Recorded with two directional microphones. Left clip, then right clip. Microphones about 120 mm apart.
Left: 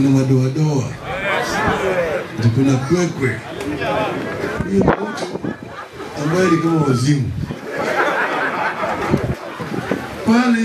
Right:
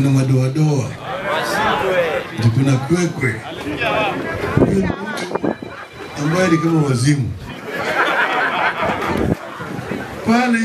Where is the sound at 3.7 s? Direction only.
40° right (ahead or behind).